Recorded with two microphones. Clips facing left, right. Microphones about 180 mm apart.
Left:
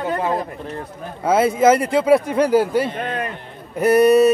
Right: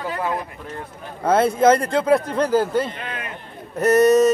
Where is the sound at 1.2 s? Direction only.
5° left (ahead or behind).